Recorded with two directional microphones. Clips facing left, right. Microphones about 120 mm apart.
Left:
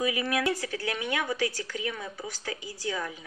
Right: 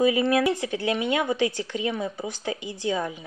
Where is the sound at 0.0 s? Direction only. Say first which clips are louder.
Right 7 dB; 30° right (ahead or behind).